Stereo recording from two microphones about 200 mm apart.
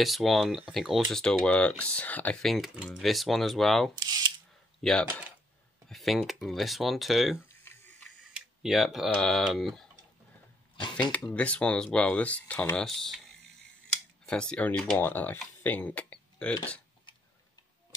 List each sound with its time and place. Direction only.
0.0 s speech: centre (ahead or behind)
4.0 s camera: 20° right (ahead or behind)
4.8 s speech: 5° left (ahead or behind)
11.0 s speech: 5° left (ahead or behind)
14.2 s speech: 5° left (ahead or behind)